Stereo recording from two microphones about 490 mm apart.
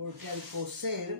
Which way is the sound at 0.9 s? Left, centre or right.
Right.